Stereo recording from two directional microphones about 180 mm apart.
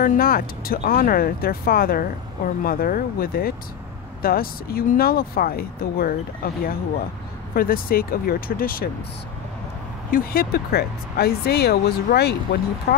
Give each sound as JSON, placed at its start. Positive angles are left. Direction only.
{"t": 0.0, "sound": "speech", "side_deg": 55}
{"t": 10.1, "sound": "speech", "side_deg": 55}